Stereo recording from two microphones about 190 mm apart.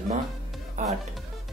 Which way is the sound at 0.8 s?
35° right (ahead or behind).